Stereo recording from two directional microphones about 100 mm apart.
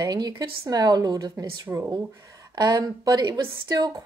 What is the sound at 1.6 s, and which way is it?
Speech, 20° right (ahead or behind).